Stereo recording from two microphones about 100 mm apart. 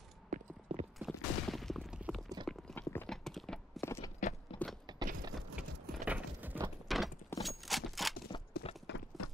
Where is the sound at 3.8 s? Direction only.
25° left (ahead or behind).